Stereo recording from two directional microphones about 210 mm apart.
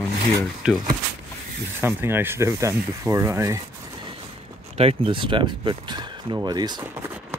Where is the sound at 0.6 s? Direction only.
5° right (ahead or behind).